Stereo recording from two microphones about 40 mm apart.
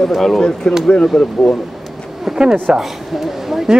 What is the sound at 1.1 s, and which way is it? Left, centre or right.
Speech, centre.